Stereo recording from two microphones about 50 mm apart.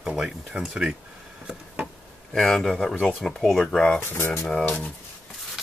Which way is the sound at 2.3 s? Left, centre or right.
Centre.